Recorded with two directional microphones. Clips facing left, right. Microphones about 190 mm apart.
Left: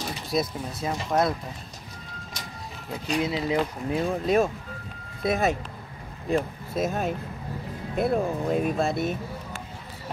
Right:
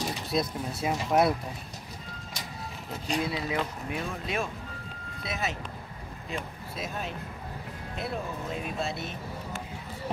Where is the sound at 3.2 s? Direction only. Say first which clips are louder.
Left 5 dB; 25° left (ahead or behind); by 9.2 s 50° left (ahead or behind).